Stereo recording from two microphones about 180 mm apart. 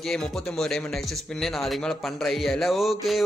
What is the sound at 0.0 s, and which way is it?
Speech, 5° left (ahead or behind).